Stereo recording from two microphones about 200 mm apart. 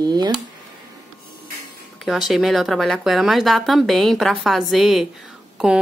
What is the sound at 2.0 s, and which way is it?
A woman's voice, centre (ahead or behind).